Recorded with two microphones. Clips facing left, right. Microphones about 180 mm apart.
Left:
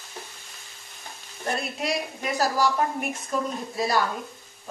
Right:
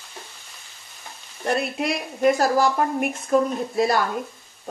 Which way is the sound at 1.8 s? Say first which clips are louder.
Right 7 dB; 55° right (ahead or behind).